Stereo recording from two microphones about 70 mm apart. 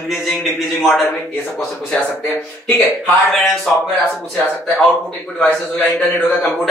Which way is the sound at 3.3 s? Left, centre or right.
Centre.